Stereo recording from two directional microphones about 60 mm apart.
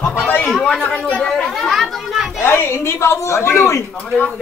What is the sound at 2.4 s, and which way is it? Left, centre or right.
A woman's voice, left.